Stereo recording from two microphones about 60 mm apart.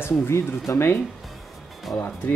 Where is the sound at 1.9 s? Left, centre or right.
Centre.